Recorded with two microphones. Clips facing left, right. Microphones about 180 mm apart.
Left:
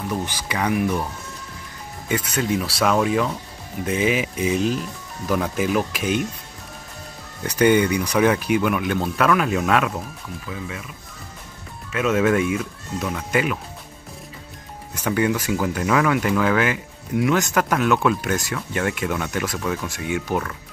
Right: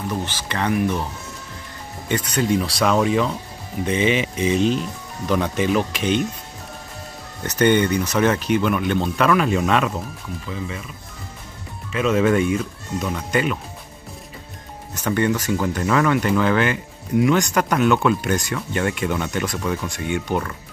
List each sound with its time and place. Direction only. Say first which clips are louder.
0.1 s speech: even; 15° left (ahead or behind)
2.0 s speech: right 2 dB; 5° left (ahead or behind)
7.4 s speech: even; 10° left (ahead or behind)
11.9 s speech: right 1 dB; 5° left (ahead or behind)
15.0 s speech: right 1 dB; 5° left (ahead or behind)